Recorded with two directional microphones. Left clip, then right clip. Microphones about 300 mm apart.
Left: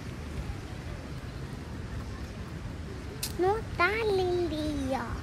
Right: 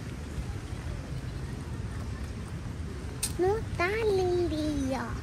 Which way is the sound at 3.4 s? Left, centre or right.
Centre.